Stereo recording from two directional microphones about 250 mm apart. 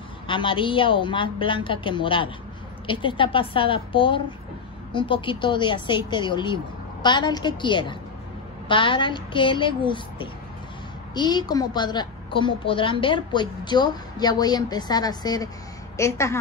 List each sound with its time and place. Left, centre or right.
0.3 s a woman's voice: centre